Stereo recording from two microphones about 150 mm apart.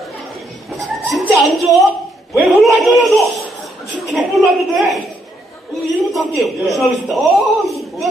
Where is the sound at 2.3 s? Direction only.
Centre (ahead or behind).